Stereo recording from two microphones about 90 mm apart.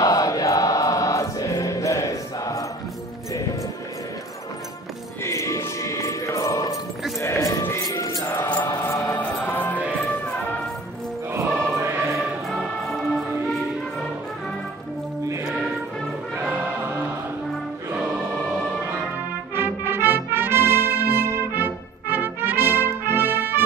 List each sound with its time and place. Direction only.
0.0 s music: 40° left (ahead or behind)
5.2 s music: 35° left (ahead or behind)
7.2 s a sound: 35° left (ahead or behind)
7.9 s music: 40° left (ahead or behind)
8.5 s music: 25° left (ahead or behind)
9.1 s music: 15° left (ahead or behind)
11.7 s music: 25° right (ahead or behind)
12.4 s music: 5° left (ahead or behind)
19.5 s brass instrument: 25° right (ahead or behind)